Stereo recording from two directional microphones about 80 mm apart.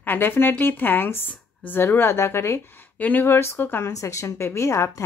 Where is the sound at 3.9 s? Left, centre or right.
Left.